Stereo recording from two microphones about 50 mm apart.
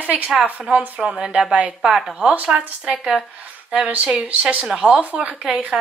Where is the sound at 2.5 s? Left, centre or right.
Right.